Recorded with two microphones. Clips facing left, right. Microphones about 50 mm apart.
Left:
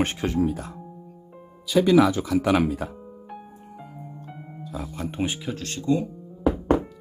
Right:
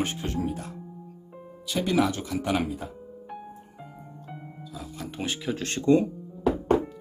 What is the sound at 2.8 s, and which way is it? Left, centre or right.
Speech, left.